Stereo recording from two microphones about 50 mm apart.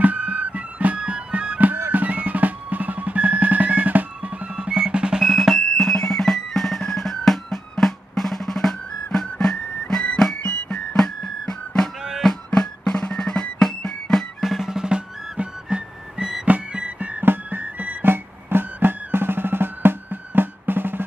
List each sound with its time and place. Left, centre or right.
0.0 s music: right
1.9 s music: right; by 5.2 s centre
5.2 s music: centre
14.4 s music: centre; by 16.9 s right
17.2 s music: right
18.0 s music: right